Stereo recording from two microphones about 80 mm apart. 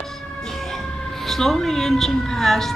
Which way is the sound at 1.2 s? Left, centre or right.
Centre.